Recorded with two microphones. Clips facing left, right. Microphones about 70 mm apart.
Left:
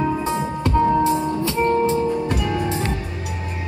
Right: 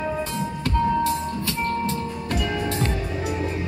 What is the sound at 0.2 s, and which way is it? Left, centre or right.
Music, left.